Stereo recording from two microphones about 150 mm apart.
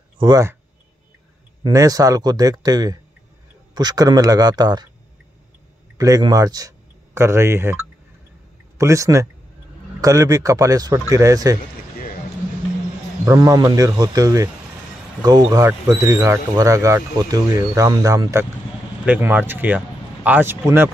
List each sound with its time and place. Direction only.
0.2 s speech: 25° right (ahead or behind)
1.6 s speech: 25° right (ahead or behind)
5.9 s speech: 25° right (ahead or behind)
8.7 s speech: 20° right (ahead or behind)
13.2 s speech: 25° right (ahead or behind)